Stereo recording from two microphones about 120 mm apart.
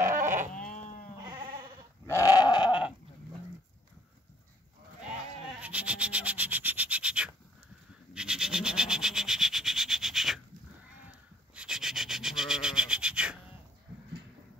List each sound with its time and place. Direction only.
0.0 s sheep: 20° right (ahead or behind)
0.7 s sheep: 90° left
2.0 s goat: 25° left (ahead or behind)
5.6 s a sound: 10° right (ahead or behind)
8.1 s rub: 5° right (ahead or behind)
11.5 s rub: 5° right (ahead or behind)